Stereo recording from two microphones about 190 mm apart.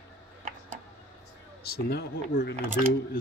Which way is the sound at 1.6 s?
55° left (ahead or behind).